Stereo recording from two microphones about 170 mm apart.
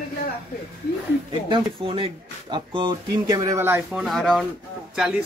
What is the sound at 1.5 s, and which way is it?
Speech, 35° right (ahead or behind).